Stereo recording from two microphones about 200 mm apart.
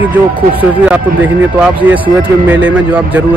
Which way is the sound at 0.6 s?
5° right (ahead or behind).